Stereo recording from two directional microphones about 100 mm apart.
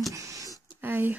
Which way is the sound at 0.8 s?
20° right (ahead or behind).